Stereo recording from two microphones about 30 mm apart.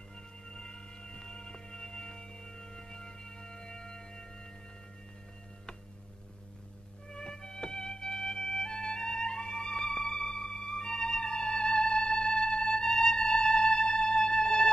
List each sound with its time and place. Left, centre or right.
0.6 s music: left
7.1 s music: left